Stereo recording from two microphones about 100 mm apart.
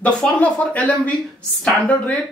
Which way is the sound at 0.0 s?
15° left (ahead or behind).